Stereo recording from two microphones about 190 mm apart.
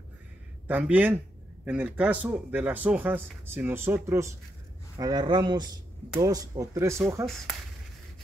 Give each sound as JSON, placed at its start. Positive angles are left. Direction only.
{"t": 0.7, "sound": "speech", "side_deg": -10}